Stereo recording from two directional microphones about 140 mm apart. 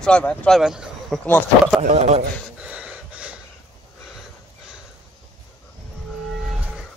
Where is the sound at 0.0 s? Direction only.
10° left (ahead or behind).